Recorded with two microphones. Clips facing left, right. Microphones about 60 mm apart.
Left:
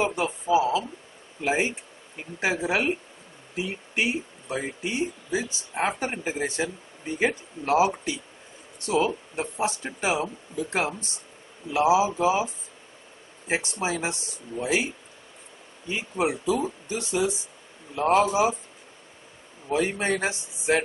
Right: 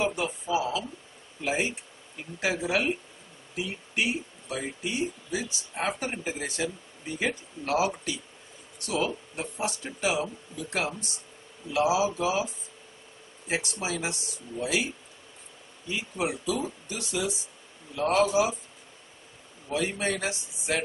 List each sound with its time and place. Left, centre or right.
0.0 s speech: left
13.5 s speech: left
15.9 s speech: left
19.7 s speech: left